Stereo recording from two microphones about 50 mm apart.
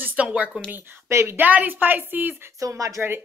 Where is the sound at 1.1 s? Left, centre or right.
Right.